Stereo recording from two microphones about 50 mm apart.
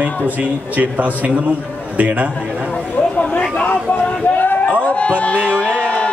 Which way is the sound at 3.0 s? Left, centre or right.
Left.